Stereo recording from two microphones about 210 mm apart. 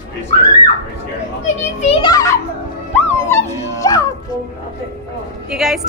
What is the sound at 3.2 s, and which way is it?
Music, 15° left (ahead or behind).